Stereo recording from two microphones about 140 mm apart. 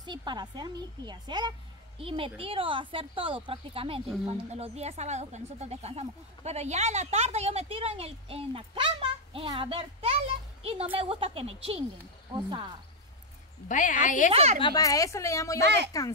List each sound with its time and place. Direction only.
0.0 s speech: 30° right (ahead or behind)
13.7 s a woman's voice: 65° left (ahead or behind)
14.3 s speech: 50° right (ahead or behind)
14.6 s speech: 25° left (ahead or behind)